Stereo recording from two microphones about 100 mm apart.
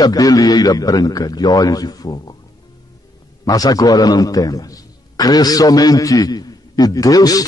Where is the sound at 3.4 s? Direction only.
35° left (ahead or behind).